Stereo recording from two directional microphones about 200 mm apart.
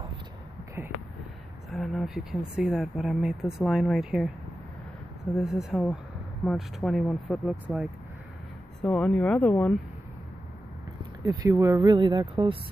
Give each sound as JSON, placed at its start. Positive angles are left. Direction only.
{"t": 0.8, "sound": "speech", "side_deg": -10}
{"t": 1.7, "sound": "speech", "side_deg": 0}
{"t": 5.3, "sound": "speech", "side_deg": 0}
{"t": 8.8, "sound": "speech", "side_deg": 5}
{"t": 11.0, "sound": "speech", "side_deg": -15}